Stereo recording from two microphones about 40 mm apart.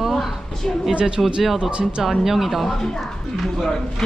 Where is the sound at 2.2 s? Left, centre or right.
Centre.